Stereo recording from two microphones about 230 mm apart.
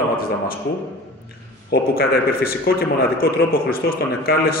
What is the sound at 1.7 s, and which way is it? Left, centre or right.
A man's voice, left.